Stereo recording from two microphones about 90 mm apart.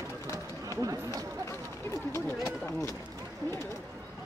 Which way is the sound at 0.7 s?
40° right (ahead or behind).